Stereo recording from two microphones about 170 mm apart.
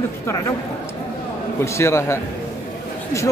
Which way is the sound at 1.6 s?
15° left (ahead or behind).